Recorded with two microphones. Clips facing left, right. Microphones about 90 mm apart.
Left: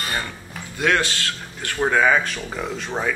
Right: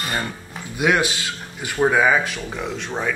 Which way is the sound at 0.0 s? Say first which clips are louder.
Right 2 dB; 10° right (ahead or behind).